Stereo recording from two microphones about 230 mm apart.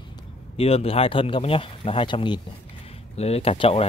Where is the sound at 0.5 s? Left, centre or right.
Left.